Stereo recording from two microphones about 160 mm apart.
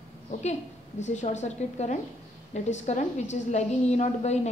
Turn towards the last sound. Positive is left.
turn(degrees=45)  # may be behind; listen again after turning